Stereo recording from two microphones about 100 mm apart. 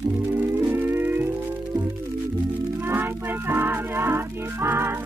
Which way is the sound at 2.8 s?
20° right (ahead or behind).